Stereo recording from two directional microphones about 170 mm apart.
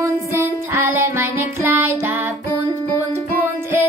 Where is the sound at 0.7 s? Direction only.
15° right (ahead or behind).